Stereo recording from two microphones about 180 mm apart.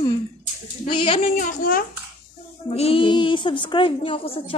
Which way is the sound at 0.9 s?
30° left (ahead or behind).